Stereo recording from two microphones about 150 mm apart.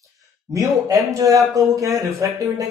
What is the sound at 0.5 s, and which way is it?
Speech, 20° right (ahead or behind).